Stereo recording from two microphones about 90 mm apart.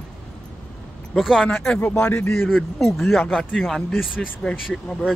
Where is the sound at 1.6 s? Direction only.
10° left (ahead or behind).